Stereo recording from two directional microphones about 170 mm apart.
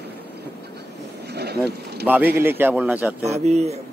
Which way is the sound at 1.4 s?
70° right (ahead or behind).